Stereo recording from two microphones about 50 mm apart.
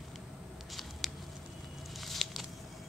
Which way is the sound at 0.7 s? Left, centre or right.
Centre.